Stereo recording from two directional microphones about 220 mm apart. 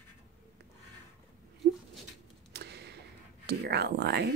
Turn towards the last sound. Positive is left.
turn(degrees=-50)  # may be behind; listen again after turning